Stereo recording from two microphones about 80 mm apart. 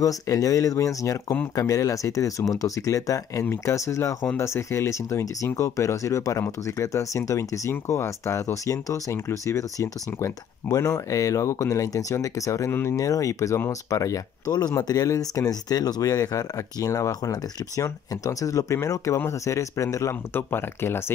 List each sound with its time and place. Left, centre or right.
0.0 s speech: left
20.3 s speech: left